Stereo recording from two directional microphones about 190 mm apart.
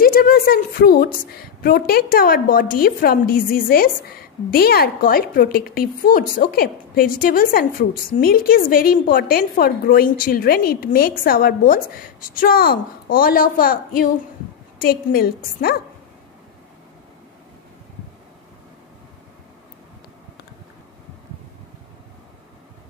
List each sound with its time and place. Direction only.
0.0 s a woman's voice: 50° left (ahead or behind)